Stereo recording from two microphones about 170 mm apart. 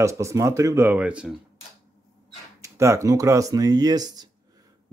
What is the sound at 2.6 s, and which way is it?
Speech, 15° right (ahead or behind).